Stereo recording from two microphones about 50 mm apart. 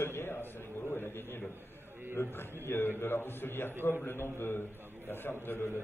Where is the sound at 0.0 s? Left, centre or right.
Left.